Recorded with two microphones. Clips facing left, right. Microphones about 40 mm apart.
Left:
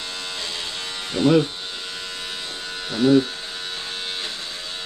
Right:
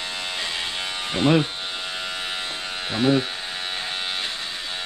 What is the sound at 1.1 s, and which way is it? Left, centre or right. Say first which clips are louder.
Speech: left 2 dB; right.